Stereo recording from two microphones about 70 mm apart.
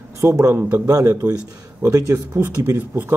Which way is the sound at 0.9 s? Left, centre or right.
Right.